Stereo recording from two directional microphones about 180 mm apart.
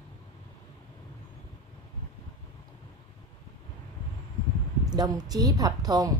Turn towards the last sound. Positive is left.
turn(degrees=-20)  # may be behind; listen again after turning